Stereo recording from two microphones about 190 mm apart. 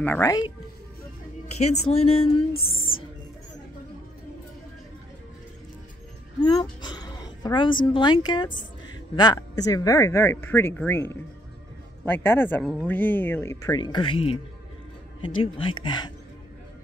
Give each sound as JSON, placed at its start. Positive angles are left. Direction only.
{"t": 0.0, "sound": "speech", "side_deg": 15}
{"t": 1.6, "sound": "speech", "side_deg": 35}
{"t": 2.5, "sound": "music", "side_deg": 50}
{"t": 6.4, "sound": "a sound", "side_deg": 20}
{"t": 7.9, "sound": "speech", "side_deg": 25}